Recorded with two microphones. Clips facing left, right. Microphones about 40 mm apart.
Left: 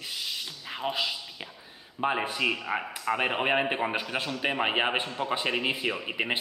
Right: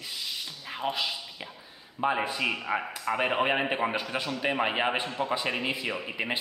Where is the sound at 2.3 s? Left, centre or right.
Centre.